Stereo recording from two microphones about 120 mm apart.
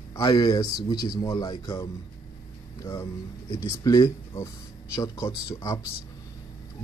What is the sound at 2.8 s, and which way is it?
Speech, 25° left (ahead or behind).